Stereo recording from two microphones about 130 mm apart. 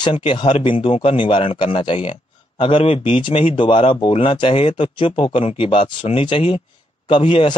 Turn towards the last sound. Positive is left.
turn(degrees=40)  # may be behind; listen again after turning